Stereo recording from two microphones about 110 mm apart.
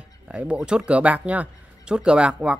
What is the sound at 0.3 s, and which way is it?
Speech, 10° right (ahead or behind).